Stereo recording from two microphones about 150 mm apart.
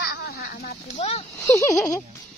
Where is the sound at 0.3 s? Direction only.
90° left.